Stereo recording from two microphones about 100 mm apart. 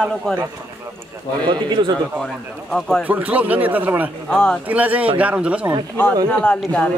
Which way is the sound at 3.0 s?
15° right (ahead or behind).